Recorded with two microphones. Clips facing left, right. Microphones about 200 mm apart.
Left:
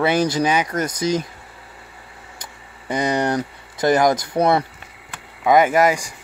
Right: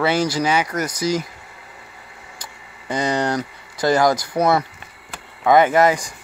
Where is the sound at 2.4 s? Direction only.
20° left (ahead or behind).